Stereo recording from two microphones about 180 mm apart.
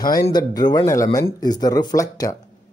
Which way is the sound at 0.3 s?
20° left (ahead or behind).